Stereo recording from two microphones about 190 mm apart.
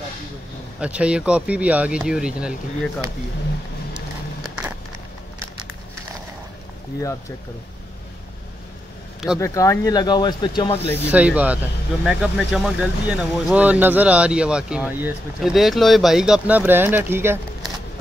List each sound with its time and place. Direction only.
0.7 s speech: 5° right (ahead or behind)
3.9 s a sound: 5° right (ahead or behind)
9.4 s speech: 15° left (ahead or behind)
11.1 s speech: 5° right (ahead or behind)
15.5 s speech: centre (ahead or behind)